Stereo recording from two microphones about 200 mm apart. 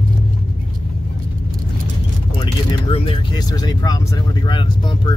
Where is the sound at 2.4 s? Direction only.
25° left (ahead or behind).